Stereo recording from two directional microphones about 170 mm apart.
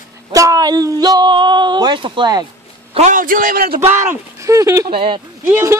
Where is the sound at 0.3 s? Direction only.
20° right (ahead or behind).